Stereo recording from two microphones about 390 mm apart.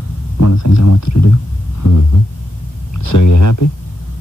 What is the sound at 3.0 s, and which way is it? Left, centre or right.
Speech, left.